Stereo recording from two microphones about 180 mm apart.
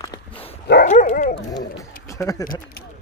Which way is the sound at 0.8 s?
40° left (ahead or behind).